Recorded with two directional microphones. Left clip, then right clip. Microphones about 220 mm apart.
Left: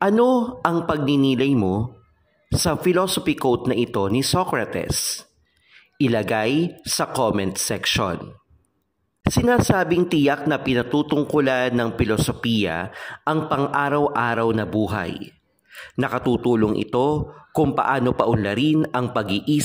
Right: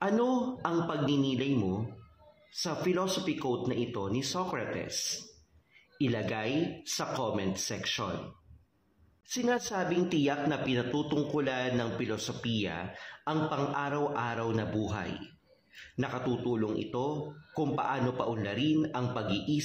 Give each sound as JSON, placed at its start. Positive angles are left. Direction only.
{"t": 0.0, "sound": "speech", "side_deg": 45}
{"t": 9.3, "sound": "speech", "side_deg": 45}